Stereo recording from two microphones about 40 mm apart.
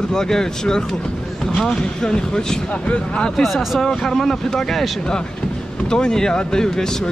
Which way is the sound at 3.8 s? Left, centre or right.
Centre.